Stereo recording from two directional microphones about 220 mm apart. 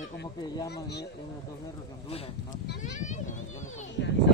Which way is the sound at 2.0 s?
25° left (ahead or behind).